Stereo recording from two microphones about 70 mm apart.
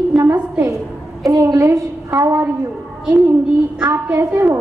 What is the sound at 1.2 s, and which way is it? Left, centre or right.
Speech, right.